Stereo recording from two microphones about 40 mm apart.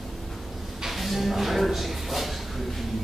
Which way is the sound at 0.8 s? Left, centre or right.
Centre.